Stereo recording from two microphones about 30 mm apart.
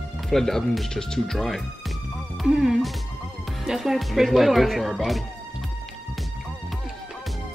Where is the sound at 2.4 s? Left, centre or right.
Centre.